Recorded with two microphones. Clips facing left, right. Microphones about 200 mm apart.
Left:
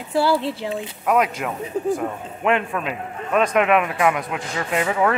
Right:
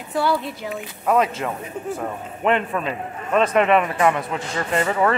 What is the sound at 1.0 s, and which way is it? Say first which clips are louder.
Speech: right 1 dB; 5° left (ahead or behind).